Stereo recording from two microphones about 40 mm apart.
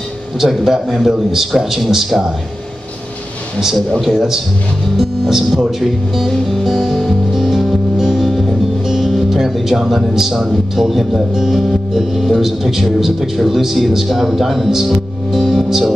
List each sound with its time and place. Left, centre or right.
0.4 s a man's voice: centre
3.6 s a man's voice: centre
7.5 s music: centre
8.8 s a man's voice: centre